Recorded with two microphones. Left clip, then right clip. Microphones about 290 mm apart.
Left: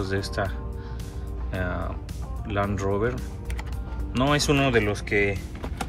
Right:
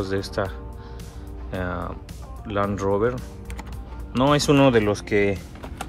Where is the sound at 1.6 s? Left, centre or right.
Centre.